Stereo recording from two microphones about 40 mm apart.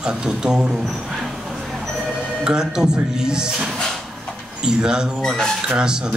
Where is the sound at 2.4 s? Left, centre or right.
Centre.